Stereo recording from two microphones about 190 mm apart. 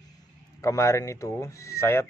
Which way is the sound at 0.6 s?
15° left (ahead or behind).